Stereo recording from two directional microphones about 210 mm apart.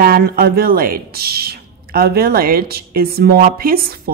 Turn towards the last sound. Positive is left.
turn(degrees=-45)  # may be behind; listen again after turning